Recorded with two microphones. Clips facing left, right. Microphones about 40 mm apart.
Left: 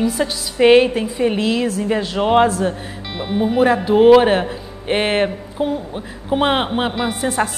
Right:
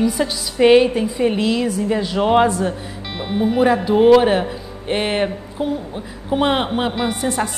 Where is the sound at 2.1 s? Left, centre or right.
Centre.